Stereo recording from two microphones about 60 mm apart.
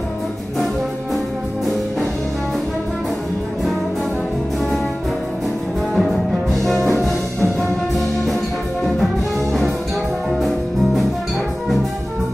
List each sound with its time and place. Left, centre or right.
5.9 s music: centre
9.0 s music: centre